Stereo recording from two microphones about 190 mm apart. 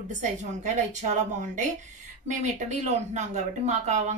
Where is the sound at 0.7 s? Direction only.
40° right (ahead or behind).